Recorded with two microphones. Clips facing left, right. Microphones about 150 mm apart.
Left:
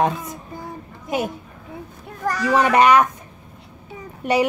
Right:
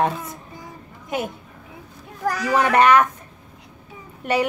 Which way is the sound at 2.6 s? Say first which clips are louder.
Left 1 dB; 15° left (ahead or behind).